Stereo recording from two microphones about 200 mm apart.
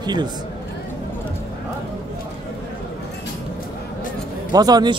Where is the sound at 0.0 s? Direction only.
20° right (ahead or behind).